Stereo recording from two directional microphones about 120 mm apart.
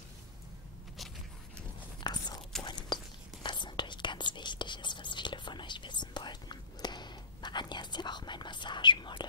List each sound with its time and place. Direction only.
2.0 s biting: 35° left (ahead or behind)
2.6 s a sound: 40° left (ahead or behind)
3.4 s whispering: 40° left (ahead or behind)